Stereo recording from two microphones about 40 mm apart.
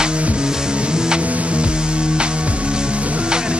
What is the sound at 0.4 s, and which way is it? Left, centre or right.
Music, centre.